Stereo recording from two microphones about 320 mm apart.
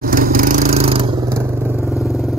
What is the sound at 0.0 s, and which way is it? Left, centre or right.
Vehicle, right.